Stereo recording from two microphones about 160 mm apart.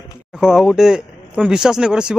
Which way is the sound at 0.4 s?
5° right (ahead or behind).